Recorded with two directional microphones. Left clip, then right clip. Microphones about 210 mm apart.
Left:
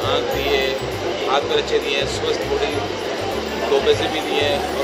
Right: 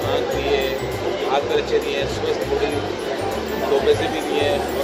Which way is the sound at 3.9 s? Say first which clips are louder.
Left 1 dB; 15° right (ahead or behind).